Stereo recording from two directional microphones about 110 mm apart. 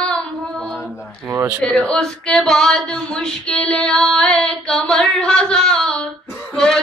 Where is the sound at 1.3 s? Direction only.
25° right (ahead or behind).